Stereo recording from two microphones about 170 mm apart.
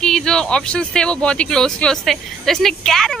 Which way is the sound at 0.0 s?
5° left (ahead or behind).